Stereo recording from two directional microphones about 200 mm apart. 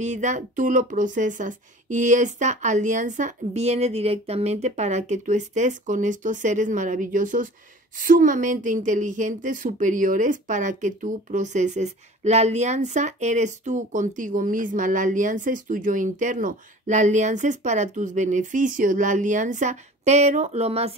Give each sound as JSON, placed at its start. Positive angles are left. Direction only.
{"t": 0.0, "sound": "a woman's voice", "side_deg": -35}